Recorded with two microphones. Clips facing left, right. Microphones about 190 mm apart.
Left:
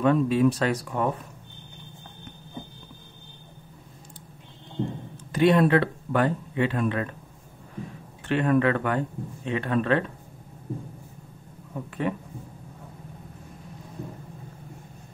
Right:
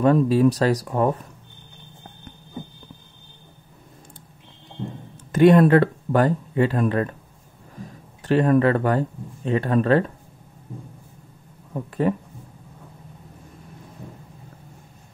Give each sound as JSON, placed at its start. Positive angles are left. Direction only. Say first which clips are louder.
{"t": 0.0, "sound": "speech", "louder": "right 4 dB", "side_deg": -40}
{"t": 5.3, "sound": "speech", "louder": "right 6 dB", "side_deg": -50}
{"t": 8.3, "sound": "speech", "louder": "right 4 dB", "side_deg": -40}
{"t": 12.0, "sound": "speech", "louder": "right 6 dB", "side_deg": -40}